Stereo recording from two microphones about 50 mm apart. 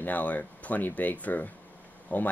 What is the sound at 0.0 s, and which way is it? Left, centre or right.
Speech, left.